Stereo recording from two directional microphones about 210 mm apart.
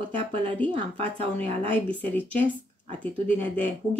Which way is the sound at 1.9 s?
10° left (ahead or behind).